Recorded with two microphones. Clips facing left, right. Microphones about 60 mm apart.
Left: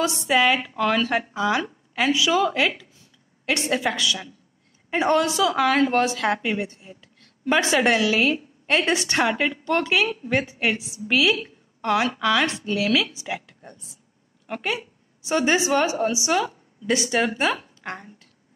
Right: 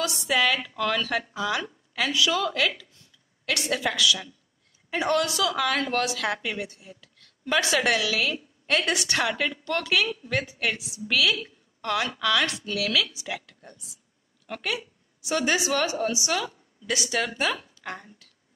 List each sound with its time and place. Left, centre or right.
0.0 s a woman's voice: left